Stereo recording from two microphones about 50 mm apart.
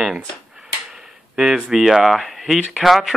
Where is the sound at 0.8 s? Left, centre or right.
Centre.